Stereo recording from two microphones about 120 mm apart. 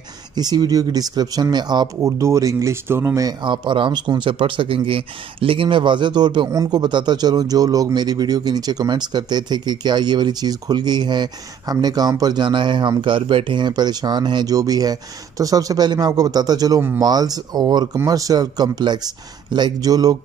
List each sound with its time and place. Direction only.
0.4 s speech: 35° right (ahead or behind)
2.0 s speech: 25° right (ahead or behind)